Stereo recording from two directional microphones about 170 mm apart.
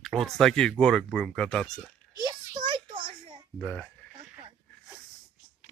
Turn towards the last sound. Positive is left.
turn(degrees=5)  # may be behind; listen again after turning